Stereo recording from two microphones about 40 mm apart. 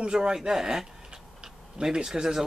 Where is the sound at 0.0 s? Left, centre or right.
Centre.